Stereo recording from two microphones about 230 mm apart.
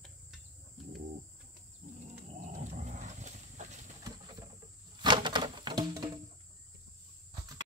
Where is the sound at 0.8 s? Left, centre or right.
Centre.